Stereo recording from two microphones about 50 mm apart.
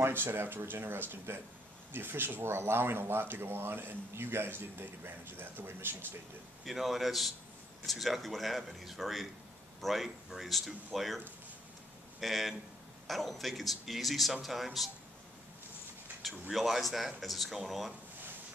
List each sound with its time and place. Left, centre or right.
0.0 s speech: right
6.6 s speech: centre
12.2 s speech: centre
16.5 s speech: centre